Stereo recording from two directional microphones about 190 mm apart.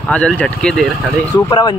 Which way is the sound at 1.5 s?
20° left (ahead or behind).